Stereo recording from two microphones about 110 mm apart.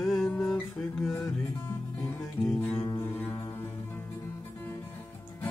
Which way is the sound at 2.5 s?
30° left (ahead or behind).